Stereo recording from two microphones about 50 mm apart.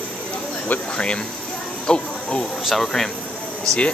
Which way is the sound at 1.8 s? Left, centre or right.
Centre.